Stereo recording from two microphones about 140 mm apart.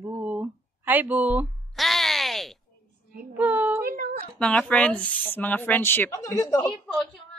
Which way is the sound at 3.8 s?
90° right.